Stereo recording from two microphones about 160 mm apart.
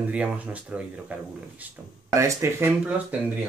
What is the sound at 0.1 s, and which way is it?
Speech, 10° right (ahead or behind).